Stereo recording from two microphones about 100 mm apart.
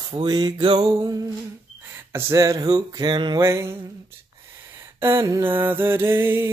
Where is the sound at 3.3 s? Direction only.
30° right (ahead or behind).